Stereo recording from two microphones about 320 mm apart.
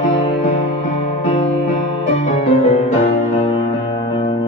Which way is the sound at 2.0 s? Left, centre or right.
Left.